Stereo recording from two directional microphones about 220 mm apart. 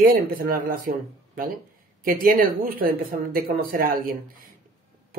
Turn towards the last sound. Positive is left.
turn(degrees=-40)  # may be behind; listen again after turning